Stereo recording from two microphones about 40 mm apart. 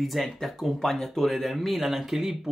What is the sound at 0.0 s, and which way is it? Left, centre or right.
Speech, centre.